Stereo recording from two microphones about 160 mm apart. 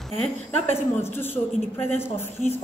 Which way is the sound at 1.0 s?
15° left (ahead or behind).